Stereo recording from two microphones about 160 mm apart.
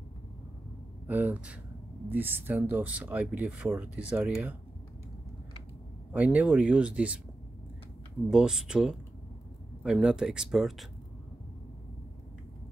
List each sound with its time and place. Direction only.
1.0 s speech: 10° right (ahead or behind)
6.1 s speech: 10° right (ahead or behind)
8.3 s speech: 5° right (ahead or behind)